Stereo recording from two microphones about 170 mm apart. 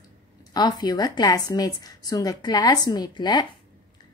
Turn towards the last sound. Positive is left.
turn(degrees=25)  # may be behind; listen again after turning